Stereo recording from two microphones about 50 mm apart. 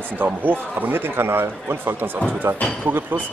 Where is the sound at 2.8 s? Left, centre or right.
Right.